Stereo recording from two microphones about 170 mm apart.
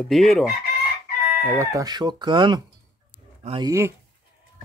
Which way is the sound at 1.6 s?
20° right (ahead or behind).